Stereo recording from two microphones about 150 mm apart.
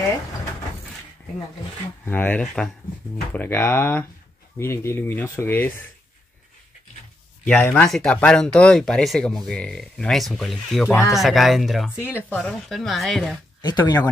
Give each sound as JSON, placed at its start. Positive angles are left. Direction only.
{"t": 2.0, "sound": "speech", "side_deg": 10}
{"t": 7.4, "sound": "speech", "side_deg": 10}
{"t": 12.1, "sound": "speech", "side_deg": 15}
{"t": 12.4, "sound": "speech", "side_deg": 0}
{"t": 13.6, "sound": "speech", "side_deg": 30}